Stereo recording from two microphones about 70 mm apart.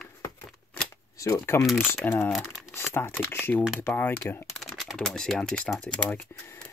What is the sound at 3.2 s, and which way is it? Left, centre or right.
Speech, left.